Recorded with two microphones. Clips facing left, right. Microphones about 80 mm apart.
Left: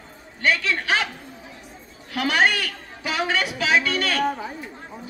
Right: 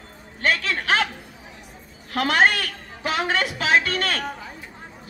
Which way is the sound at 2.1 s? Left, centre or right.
Right.